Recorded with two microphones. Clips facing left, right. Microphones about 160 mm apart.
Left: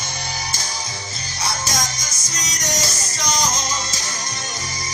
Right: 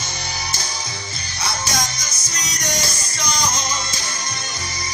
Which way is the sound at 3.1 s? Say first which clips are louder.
Left 2 dB; 40° left (ahead or behind).